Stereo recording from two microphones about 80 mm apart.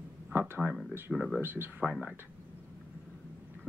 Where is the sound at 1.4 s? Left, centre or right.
Right.